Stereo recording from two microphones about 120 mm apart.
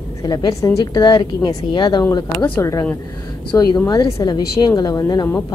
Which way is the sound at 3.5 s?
40° left (ahead or behind).